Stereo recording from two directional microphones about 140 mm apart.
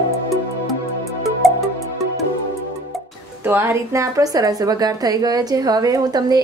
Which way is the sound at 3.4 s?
15° right (ahead or behind).